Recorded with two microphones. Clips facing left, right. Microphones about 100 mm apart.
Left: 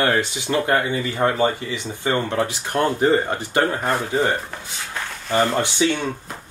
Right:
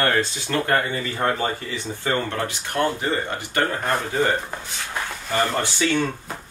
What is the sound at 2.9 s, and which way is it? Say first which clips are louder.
Speech: left 7 dB; 35° left (ahead or behind).